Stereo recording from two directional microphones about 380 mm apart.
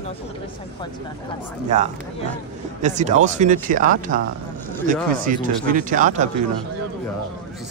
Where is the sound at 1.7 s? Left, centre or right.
Centre.